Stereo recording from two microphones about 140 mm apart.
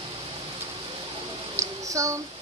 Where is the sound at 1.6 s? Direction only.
20° right (ahead or behind).